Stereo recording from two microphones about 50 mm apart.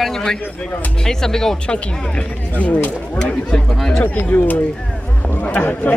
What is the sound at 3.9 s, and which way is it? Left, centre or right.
A man's voice, left.